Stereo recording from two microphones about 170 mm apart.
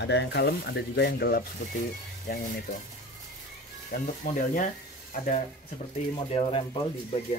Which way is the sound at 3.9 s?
55° left (ahead or behind).